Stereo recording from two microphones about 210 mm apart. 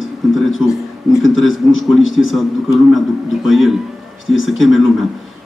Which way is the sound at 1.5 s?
65° left (ahead or behind).